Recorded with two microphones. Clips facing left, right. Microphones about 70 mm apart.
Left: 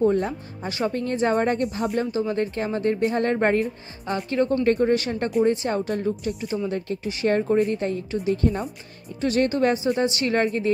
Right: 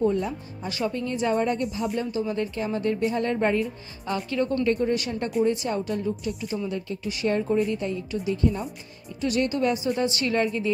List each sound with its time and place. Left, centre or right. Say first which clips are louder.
0.1 s a woman's voice: left 3 dB; left
0.7 s speech: left 2 dB; left
1.1 s a woman's voice: left 3 dB; left
2.1 s a woman's voice: left 3 dB; left
4.0 s a woman's voice: left 3 dB; left
9.2 s a woman's voice: left 3 dB; left
9.9 s speech: left 2 dB; left
10.3 s a woman's voice: left 2 dB; left